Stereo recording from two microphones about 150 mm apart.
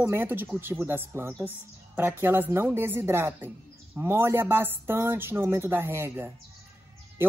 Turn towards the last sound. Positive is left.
turn(degrees=-15)  # may be behind; listen again after turning